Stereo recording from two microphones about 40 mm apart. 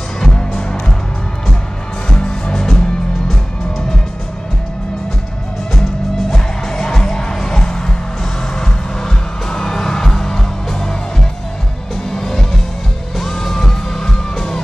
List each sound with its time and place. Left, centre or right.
0.2 s music: centre
2.0 s music: left
6.3 s music: centre